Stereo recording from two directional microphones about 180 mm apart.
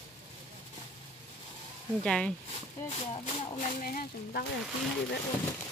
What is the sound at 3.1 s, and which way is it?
Speech, 40° left (ahead or behind).